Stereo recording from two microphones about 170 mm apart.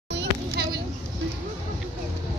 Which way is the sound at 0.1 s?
90° right.